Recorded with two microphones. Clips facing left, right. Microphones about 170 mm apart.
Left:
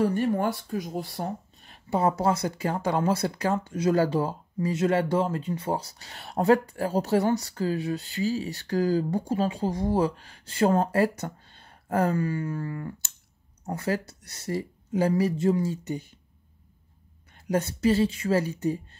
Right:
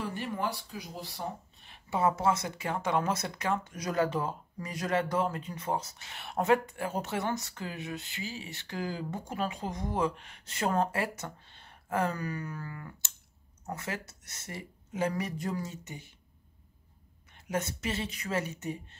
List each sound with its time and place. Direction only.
0.0 s speech: 45° left (ahead or behind)
17.3 s speech: 35° left (ahead or behind)